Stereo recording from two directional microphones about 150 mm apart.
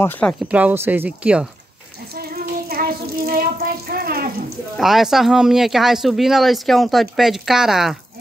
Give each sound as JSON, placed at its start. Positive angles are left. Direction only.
{"t": 0.0, "sound": "speech", "side_deg": 10}
{"t": 0.5, "sound": "speech", "side_deg": -10}
{"t": 2.1, "sound": "child singing", "side_deg": -90}
{"t": 3.9, "sound": "speech", "side_deg": -90}
{"t": 4.7, "sound": "speech", "side_deg": 0}